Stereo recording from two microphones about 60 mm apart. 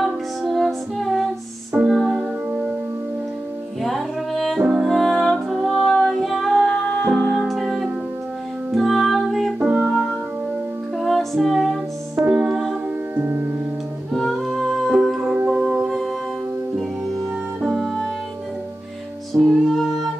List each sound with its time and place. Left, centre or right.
0.0 s music: centre
3.8 s music: centre
4.6 s music: centre
4.8 s music: centre
6.7 s music: centre
7.2 s music: centre
9.6 s music: centre
9.8 s music: centre
12.2 s music: centre
13.2 s music: right
14.1 s music: centre
15.1 s music: centre
17.6 s music: centre
19.3 s music: centre